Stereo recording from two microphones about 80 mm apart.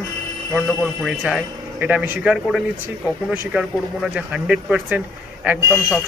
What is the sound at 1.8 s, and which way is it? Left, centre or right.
Speech, right.